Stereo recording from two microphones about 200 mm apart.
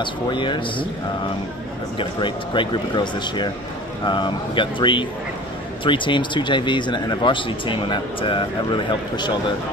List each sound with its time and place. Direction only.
0.0 s speech: 25° left (ahead or behind)
2.0 s speech: 25° left (ahead or behind)